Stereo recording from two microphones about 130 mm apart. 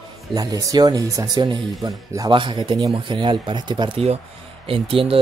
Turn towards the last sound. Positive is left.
turn(degrees=-45)  # may be behind; listen again after turning